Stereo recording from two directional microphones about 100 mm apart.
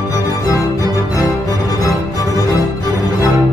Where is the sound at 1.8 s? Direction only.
35° left (ahead or behind).